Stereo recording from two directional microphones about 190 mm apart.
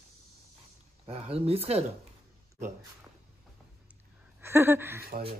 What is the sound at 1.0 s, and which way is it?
Speech, 30° right (ahead or behind).